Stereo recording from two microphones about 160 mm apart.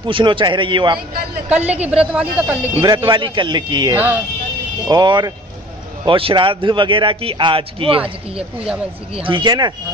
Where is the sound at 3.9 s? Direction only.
10° right (ahead or behind).